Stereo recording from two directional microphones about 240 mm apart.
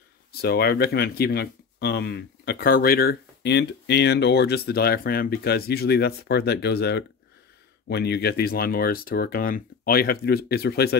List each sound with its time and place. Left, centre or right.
0.4 s speech: left